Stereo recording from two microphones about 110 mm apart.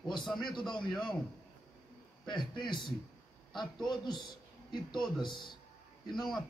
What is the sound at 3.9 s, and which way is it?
A man's voice, 40° left (ahead or behind).